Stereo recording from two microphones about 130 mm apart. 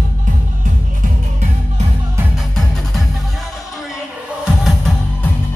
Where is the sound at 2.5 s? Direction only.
5° left (ahead or behind).